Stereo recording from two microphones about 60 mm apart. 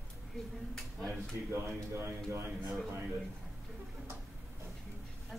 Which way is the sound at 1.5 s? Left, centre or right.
Right.